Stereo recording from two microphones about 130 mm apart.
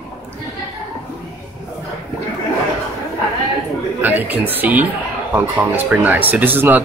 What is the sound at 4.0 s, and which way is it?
Speech, 15° right (ahead or behind).